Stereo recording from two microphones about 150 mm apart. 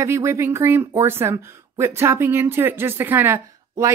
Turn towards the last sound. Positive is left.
turn(degrees=-15)  # may be behind; listen again after turning